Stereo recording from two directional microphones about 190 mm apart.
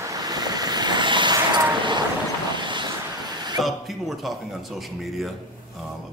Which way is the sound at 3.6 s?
Centre (ahead or behind).